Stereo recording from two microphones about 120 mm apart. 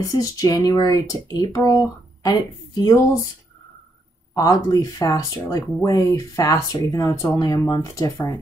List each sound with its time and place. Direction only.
0.0 s speech: 30° left (ahead or behind)
4.4 s speech: 30° left (ahead or behind)